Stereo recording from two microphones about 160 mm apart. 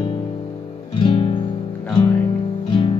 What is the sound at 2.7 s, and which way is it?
Music, 30° left (ahead or behind).